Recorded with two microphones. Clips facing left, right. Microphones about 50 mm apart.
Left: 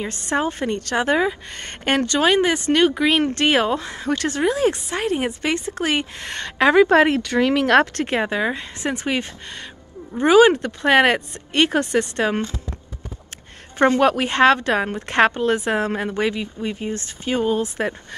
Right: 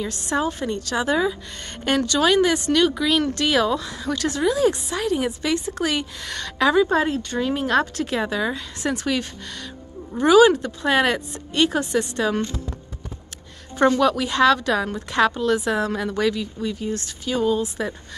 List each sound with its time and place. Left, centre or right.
0.0 s a woman's voice: left
6.7 s speech: left
8.0 s a woman's voice: left
13.7 s a woman's voice: left